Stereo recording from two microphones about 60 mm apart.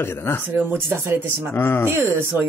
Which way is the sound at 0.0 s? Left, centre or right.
Left.